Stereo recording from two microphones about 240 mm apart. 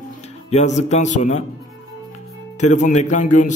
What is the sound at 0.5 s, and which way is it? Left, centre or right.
Speech, left.